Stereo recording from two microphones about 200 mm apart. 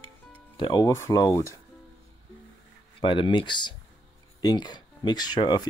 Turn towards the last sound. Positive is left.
turn(degrees=20)  # may be behind; listen again after turning